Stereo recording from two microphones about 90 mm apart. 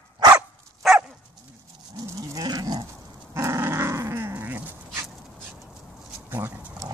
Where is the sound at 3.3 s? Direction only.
30° right (ahead or behind).